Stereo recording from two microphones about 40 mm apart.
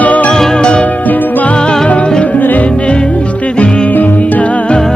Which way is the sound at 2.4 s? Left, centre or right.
Left.